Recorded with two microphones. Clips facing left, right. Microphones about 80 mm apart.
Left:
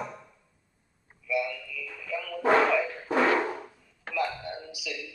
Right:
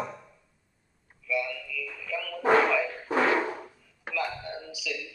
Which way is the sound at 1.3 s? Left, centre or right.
Centre.